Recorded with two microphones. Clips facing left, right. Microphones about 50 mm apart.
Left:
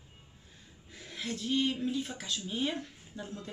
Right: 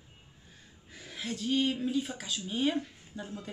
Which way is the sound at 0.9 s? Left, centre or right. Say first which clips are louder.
Even; centre.